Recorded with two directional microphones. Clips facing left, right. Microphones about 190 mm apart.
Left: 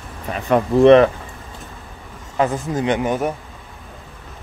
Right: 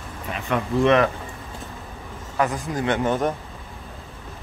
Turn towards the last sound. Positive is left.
turn(degrees=10)  # may be behind; listen again after turning